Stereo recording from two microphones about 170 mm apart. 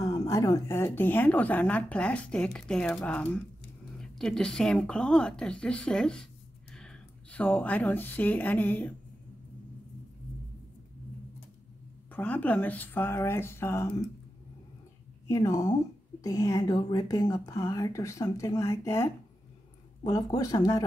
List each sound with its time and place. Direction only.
0.0 s speech: 20° left (ahead or behind)
12.1 s speech: 10° left (ahead or behind)
15.2 s a woman's voice: 20° left (ahead or behind)